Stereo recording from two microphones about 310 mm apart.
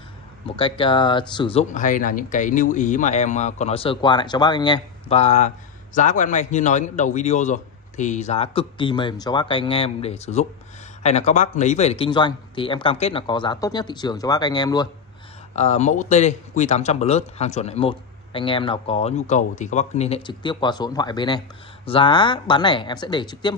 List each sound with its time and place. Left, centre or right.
0.6 s speech: centre